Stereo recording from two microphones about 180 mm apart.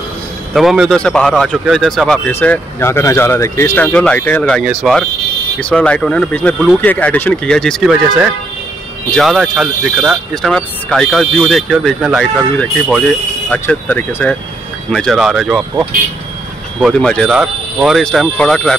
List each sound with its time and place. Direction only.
0.5 s speech: centre (ahead or behind)
16.8 s speech: 5° left (ahead or behind)